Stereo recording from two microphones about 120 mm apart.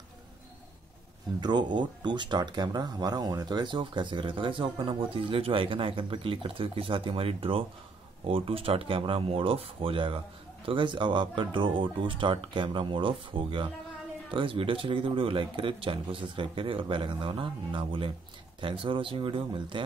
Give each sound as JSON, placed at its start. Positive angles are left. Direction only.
{"t": 1.4, "sound": "speech", "side_deg": -40}